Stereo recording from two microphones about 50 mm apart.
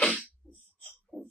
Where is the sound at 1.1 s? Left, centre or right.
Centre.